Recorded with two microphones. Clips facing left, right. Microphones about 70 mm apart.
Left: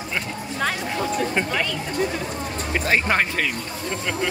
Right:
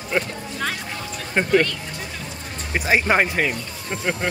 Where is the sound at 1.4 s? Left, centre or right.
Right.